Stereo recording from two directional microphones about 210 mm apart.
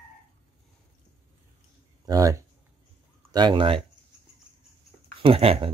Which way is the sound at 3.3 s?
20° right (ahead or behind).